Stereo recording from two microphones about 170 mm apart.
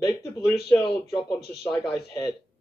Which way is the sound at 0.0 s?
15° left (ahead or behind).